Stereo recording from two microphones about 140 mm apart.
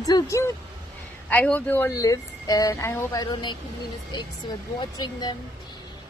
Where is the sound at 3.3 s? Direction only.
35° left (ahead or behind).